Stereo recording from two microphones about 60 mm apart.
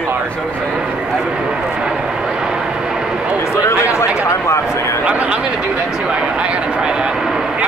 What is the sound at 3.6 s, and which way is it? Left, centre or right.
Speech, left.